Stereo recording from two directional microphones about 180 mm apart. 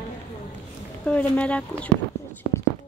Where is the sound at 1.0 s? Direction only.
5° left (ahead or behind).